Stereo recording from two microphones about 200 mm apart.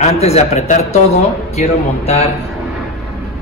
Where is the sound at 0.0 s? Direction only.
30° left (ahead or behind).